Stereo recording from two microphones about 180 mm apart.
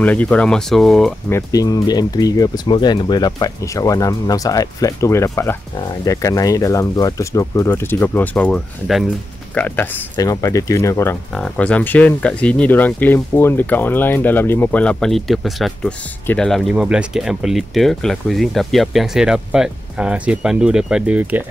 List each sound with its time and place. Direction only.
0.0 s speech: 10° left (ahead or behind)
1.3 s speech: 20° left (ahead or behind)
10.1 s speech: 20° left (ahead or behind)
11.3 s speech: 5° left (ahead or behind)